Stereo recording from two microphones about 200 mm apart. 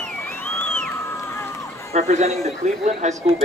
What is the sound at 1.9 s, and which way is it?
Speech, 35° right (ahead or behind).